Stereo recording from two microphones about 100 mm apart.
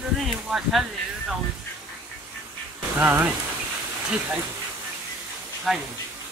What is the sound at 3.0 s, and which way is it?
Speech, 20° right (ahead or behind).